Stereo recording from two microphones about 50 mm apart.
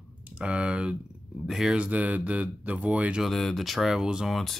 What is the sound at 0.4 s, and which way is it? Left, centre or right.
Speech, right.